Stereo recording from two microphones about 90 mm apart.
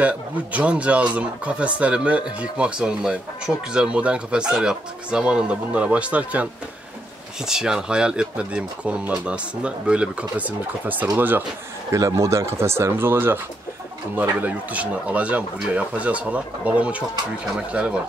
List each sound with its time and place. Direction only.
0.0 s speech: 15° right (ahead or behind)
11.9 s speech: 35° right (ahead or behind); by 17.9 s 10° right (ahead or behind)